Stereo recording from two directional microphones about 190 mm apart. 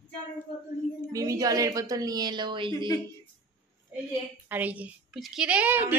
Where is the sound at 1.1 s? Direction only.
20° right (ahead or behind).